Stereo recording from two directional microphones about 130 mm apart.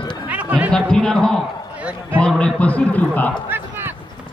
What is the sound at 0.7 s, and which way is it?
A man's voice, 5° left (ahead or behind).